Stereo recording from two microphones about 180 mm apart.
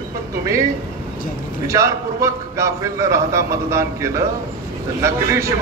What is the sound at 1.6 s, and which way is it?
A man's voice, 15° right (ahead or behind).